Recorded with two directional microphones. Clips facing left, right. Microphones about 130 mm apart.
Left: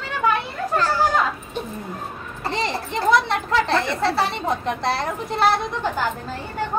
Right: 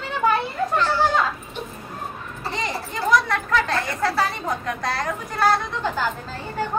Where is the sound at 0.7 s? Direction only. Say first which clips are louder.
Left 2 dB; 40° left (ahead or behind).